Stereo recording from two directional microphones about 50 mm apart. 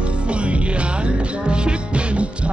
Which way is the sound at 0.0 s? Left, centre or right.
Right.